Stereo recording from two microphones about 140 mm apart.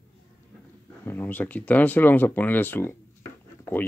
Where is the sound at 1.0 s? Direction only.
15° left (ahead or behind).